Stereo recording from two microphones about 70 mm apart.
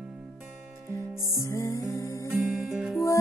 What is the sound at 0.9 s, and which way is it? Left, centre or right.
Music, left.